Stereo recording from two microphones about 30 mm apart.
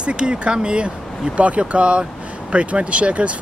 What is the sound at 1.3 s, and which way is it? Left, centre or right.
Speech, right.